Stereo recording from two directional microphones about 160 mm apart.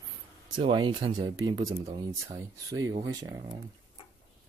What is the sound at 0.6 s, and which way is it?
Speech, 30° right (ahead or behind).